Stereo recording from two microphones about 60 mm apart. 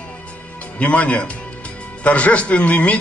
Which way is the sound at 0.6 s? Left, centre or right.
Left.